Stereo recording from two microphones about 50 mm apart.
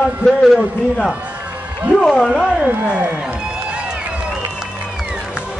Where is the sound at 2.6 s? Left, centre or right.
Right.